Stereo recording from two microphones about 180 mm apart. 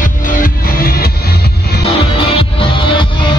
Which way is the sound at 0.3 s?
50° left (ahead or behind).